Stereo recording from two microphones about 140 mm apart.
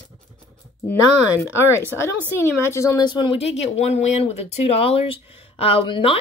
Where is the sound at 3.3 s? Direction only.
45° left (ahead or behind).